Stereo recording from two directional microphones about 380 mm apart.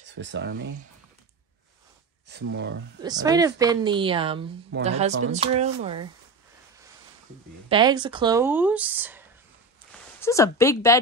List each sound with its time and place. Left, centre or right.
0.0 s speech: right
2.2 s speech: right
3.0 s speech: centre
7.7 s speech: centre
10.2 s speech: centre